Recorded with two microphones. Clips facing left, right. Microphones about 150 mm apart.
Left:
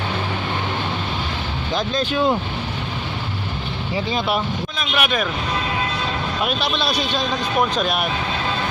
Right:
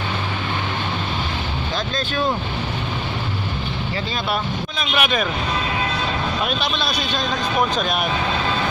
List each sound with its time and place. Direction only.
3.9 s speech: 15° left (ahead or behind)
4.7 s speech: centre (ahead or behind)
6.4 s speech: 5° left (ahead or behind)